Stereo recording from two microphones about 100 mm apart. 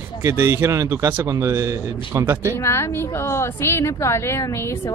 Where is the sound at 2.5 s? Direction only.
25° left (ahead or behind).